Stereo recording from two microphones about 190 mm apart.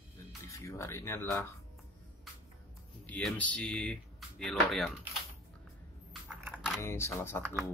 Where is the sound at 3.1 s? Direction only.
5° left (ahead or behind).